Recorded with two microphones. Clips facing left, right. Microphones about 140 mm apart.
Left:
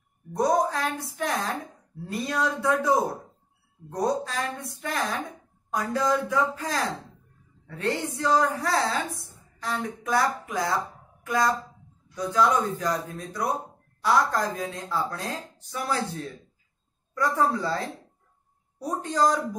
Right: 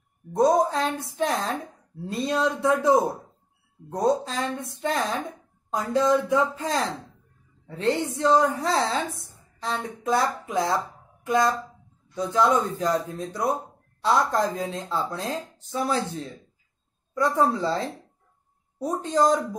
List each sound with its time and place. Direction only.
0.3 s a woman's voice: 25° right (ahead or behind)
0.7 s a sound: 25° right (ahead or behind)
1.1 s a woman's voice: 25° right (ahead or behind)
19.0 s a woman's voice: 25° right (ahead or behind)